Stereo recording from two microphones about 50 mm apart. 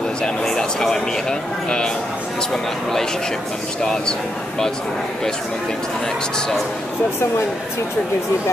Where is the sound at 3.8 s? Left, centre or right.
Centre.